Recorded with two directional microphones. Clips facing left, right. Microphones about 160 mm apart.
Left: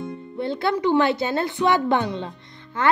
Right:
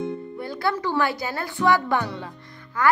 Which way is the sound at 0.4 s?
25° left (ahead or behind).